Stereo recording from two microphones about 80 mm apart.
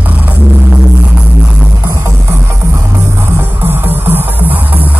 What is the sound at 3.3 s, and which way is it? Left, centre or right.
Music, right.